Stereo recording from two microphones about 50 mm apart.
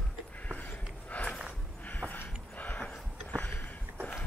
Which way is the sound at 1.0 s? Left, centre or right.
Left.